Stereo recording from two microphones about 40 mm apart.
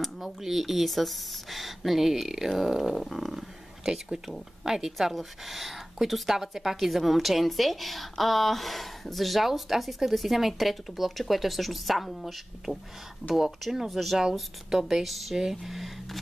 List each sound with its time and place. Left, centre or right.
0.0 s a woman's voice: centre
3.8 s a woman's voice: centre